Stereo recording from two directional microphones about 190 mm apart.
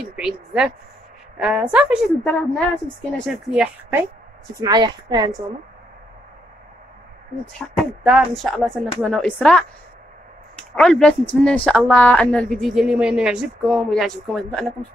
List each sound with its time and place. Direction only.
0.0 s a woman's voice: 5° right (ahead or behind)
2.2 s a woman's voice: 5° left (ahead or behind)
4.6 s a woman's voice: 20° right (ahead or behind)
7.8 s a woman's voice: centre (ahead or behind)
10.7 s a woman's voice: 5° left (ahead or behind)